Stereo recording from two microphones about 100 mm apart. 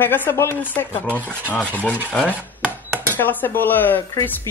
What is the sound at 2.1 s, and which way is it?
Speech, 15° left (ahead or behind).